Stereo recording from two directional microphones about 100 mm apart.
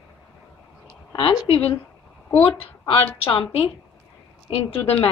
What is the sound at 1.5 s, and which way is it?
A woman's voice, 65° left (ahead or behind).